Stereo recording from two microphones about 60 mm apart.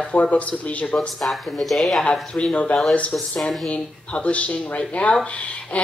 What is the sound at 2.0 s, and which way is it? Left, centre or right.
Speech, centre.